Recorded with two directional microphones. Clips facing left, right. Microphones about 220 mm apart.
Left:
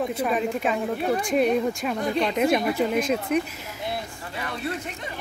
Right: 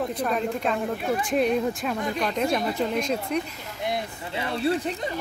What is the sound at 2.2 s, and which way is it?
Speech, 10° left (ahead or behind).